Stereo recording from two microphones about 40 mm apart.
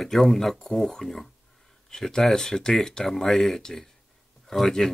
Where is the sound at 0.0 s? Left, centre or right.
Centre.